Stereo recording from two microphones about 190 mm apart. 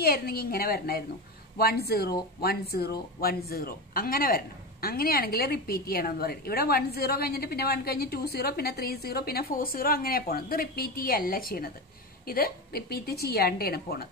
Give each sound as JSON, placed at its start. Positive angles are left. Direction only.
{"t": 0.0, "sound": "a woman's voice", "side_deg": 55}